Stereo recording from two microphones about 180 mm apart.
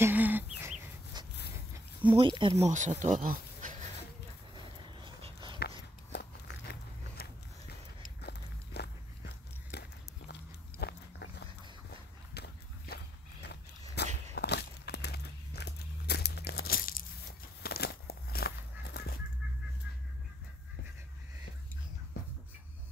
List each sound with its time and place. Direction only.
0.0 s livestock: 10° right (ahead or behind)
2.0 s speech: 25° right (ahead or behind)
2.7 s speech: 40° right (ahead or behind)
5.0 s dog: 25° right (ahead or behind)
6.1 s biting: 65° left (ahead or behind)
8.2 s walk: 65° left (ahead or behind)
10.8 s dog: 65° left (ahead or behind)
12.4 s walk: 60° left (ahead or behind)
17.6 s a sound: 60° left (ahead or behind)
18.9 s bird flight: 60° left (ahead or behind)